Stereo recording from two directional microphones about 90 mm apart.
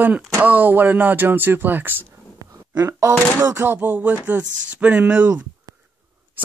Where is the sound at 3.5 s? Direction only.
20° right (ahead or behind).